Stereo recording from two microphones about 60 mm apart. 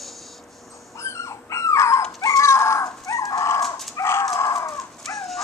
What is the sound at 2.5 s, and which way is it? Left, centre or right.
Chicken, left.